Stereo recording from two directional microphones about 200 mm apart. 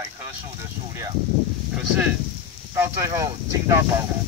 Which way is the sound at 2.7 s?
15° right (ahead or behind).